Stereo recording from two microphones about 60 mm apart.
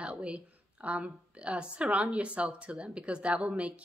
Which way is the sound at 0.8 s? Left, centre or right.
Right.